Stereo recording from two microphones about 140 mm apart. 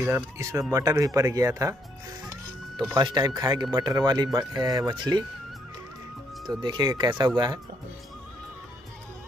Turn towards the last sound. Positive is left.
turn(degrees=-30)  # may be behind; listen again after turning